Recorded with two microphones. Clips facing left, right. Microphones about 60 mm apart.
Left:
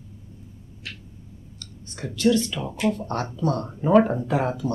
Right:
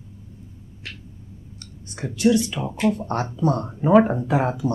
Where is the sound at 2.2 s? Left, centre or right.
Centre.